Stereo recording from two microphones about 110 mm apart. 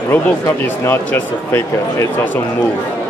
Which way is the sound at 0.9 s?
15° left (ahead or behind).